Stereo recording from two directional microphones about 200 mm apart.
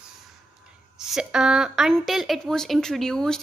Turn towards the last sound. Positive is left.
turn(degrees=5)  # may be behind; listen again after turning